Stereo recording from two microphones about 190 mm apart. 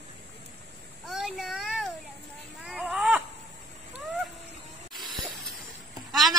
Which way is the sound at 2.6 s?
5° right (ahead or behind).